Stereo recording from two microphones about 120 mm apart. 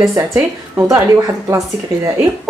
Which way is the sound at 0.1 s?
25° right (ahead or behind).